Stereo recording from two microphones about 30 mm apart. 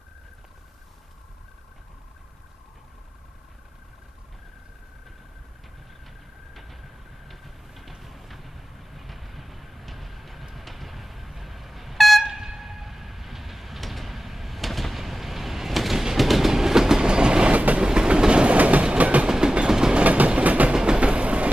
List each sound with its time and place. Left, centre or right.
6.5 s train: centre
12.3 s a sound: centre
13.7 s vehicle: centre
16.2 s train: centre
17.1 s train: right
17.5 s train: right
17.7 s train: right
18.6 s train: right
19.2 s train: right
20.0 s train: right
20.7 s train: right
21.0 s train: right